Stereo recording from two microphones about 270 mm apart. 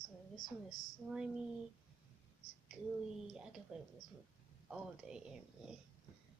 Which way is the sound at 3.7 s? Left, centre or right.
Centre.